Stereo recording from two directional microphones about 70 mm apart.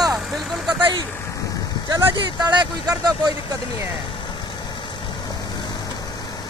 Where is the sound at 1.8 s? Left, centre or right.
Right.